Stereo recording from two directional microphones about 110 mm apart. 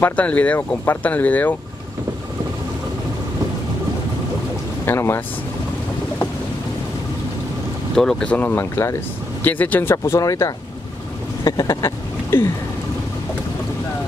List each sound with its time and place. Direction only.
0.0 s speech: 15° left (ahead or behind)
4.8 s speech: 20° left (ahead or behind)
7.9 s speech: 5° left (ahead or behind); by 12.4 s 30° left (ahead or behind)